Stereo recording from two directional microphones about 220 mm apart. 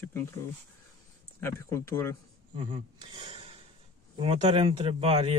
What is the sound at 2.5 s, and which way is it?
Speech, 25° right (ahead or behind).